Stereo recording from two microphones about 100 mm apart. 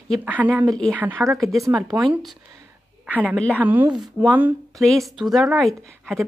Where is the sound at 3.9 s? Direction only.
Centre (ahead or behind).